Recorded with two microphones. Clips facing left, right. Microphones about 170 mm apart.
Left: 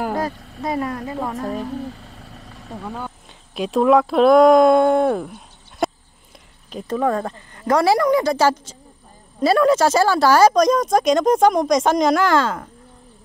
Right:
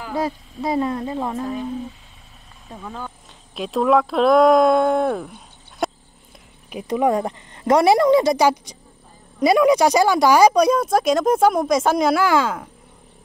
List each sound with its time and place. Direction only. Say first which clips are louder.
0.7 s speech: right 4 dB; 25° right (ahead or behind)
1.7 s vehicle: left 1 dB; 70° left (ahead or behind)
2.7 s speech: left 3 dB; 5° left (ahead or behind)
6.7 s speech: right 1 dB; 15° right (ahead or behind)